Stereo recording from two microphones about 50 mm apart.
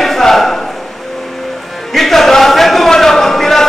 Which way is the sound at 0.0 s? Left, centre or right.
Centre.